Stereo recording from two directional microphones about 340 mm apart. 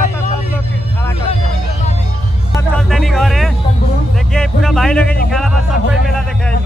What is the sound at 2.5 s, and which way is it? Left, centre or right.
Music, centre.